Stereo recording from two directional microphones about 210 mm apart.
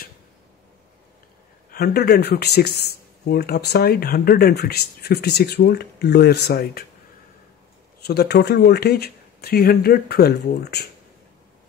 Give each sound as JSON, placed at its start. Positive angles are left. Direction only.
{"t": 1.7, "sound": "speech", "side_deg": 50}
{"t": 8.0, "sound": "speech", "side_deg": 50}